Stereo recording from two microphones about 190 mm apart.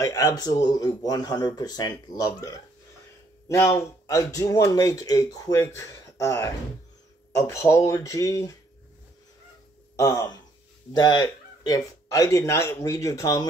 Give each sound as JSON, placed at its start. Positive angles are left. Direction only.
{"t": 0.0, "sound": "speech", "side_deg": 20}
{"t": 9.9, "sound": "speech", "side_deg": 20}